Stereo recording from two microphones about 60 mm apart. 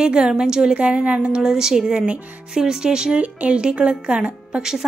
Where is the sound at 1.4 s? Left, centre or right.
Centre.